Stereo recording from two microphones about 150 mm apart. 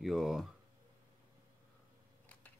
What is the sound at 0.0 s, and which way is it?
Speech, centre (ahead or behind).